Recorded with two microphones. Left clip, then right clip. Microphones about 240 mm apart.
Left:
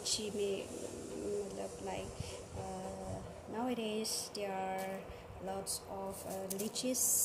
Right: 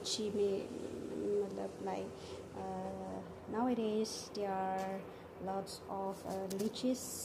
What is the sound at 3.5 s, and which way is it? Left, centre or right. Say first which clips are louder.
A woman's voice: right 3 dB; centre.